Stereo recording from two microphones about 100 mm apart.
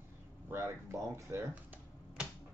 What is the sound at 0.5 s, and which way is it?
Speech, 25° right (ahead or behind).